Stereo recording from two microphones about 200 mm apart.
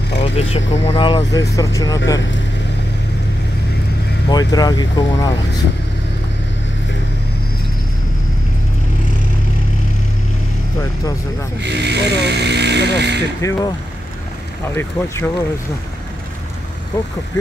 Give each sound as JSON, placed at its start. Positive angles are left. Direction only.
{"t": 0.2, "sound": "speech", "side_deg": 30}
{"t": 1.4, "sound": "speech", "side_deg": 15}
{"t": 4.3, "sound": "speech", "side_deg": 20}
{"t": 11.6, "sound": "speech", "side_deg": -60}
{"t": 13.4, "sound": "speech", "side_deg": 15}
{"t": 14.8, "sound": "speech", "side_deg": 10}